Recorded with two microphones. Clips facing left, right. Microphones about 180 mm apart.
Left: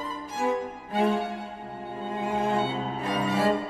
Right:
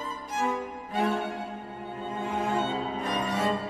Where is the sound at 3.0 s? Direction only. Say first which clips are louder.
Left 5 dB; 5° left (ahead or behind).